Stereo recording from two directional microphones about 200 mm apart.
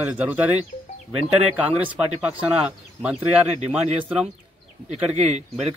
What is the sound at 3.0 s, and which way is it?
Speech, 5° right (ahead or behind).